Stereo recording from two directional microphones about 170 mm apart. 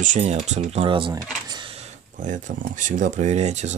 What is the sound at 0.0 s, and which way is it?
Speech, 45° right (ahead or behind).